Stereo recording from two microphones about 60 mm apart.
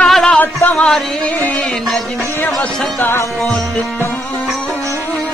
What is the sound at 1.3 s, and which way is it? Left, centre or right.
Music, left.